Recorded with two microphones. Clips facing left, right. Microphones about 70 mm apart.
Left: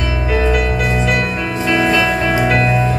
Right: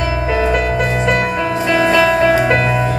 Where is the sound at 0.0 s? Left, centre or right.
Right.